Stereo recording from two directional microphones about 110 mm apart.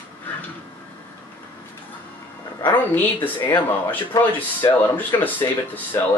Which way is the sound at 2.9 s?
15° left (ahead or behind).